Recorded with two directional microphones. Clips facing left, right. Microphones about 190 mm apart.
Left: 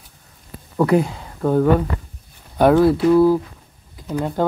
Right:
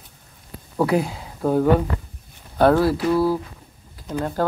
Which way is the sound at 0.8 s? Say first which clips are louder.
Left 3 dB; 5° right (ahead or behind).